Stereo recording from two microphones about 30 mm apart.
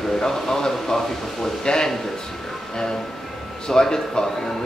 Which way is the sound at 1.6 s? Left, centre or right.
Left.